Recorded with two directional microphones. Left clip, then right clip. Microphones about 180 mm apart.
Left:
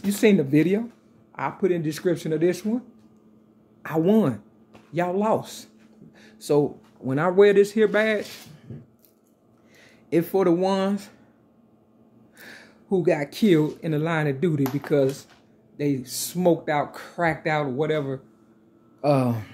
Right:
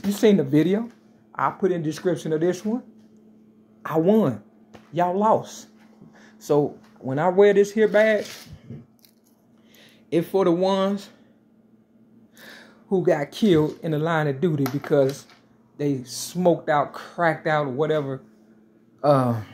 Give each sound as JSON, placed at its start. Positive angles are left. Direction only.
{"t": 0.1, "sound": "speech", "side_deg": 15}
{"t": 3.8, "sound": "speech", "side_deg": 15}
{"t": 7.1, "sound": "speech", "side_deg": 25}
{"t": 12.4, "sound": "speech", "side_deg": 15}